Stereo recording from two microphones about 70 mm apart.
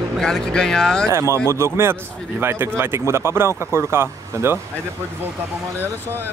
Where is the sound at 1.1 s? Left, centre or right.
Right.